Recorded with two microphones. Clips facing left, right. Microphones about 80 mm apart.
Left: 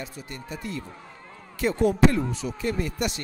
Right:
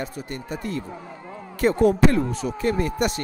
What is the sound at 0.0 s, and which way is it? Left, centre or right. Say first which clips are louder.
Speech: right 6 dB; right.